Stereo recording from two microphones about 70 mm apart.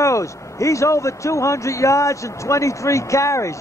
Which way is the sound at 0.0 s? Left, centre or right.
Left.